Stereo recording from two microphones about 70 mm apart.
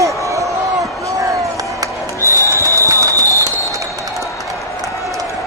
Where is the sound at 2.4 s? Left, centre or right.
Right.